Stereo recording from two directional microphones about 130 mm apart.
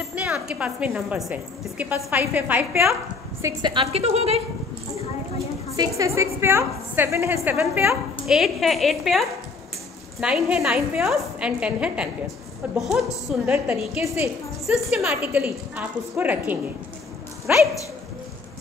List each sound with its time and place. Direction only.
0.1 s a woman's voice: 10° right (ahead or behind)
3.6 s a woman's voice: 45° right (ahead or behind)
5.8 s a woman's voice: 25° right (ahead or behind)
8.3 s a woman's voice: centre (ahead or behind)